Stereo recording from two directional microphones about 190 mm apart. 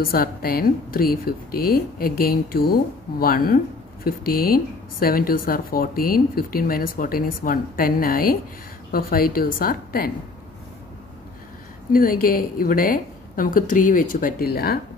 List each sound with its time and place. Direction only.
0.0 s speech: 50° left (ahead or behind)
11.9 s speech: 50° left (ahead or behind)